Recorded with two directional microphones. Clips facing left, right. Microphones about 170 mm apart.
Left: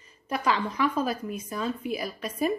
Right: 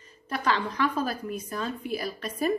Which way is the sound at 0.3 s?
10° left (ahead or behind).